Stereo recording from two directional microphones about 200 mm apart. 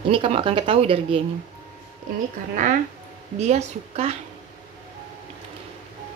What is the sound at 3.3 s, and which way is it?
Speech, 35° right (ahead or behind).